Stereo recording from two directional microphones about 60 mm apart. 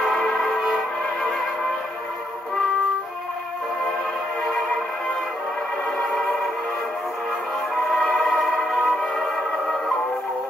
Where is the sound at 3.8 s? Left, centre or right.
Centre.